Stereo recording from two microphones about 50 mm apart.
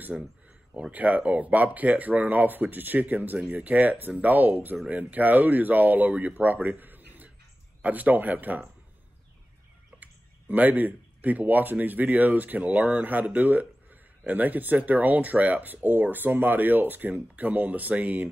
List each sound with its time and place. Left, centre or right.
0.1 s speech: right
10.5 s speech: right